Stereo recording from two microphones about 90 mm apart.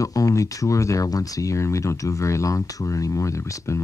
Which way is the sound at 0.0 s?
40° left (ahead or behind).